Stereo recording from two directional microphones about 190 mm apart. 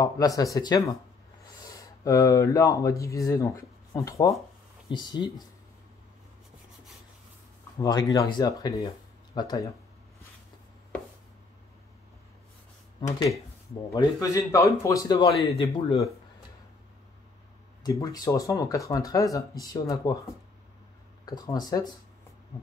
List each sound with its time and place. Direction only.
0.0 s speech: 20° left (ahead or behind)
8.1 s speech: 20° left (ahead or behind)
13.9 s speech: 15° left (ahead or behind)
17.8 s speech: 20° left (ahead or behind)
21.3 s speech: 20° left (ahead or behind)